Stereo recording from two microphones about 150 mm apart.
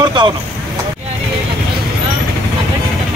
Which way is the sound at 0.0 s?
30° right (ahead or behind).